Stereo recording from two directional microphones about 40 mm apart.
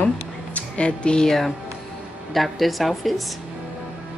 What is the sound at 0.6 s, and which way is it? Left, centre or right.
Speech, left.